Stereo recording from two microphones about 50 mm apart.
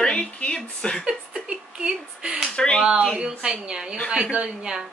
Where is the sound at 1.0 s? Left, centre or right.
Centre.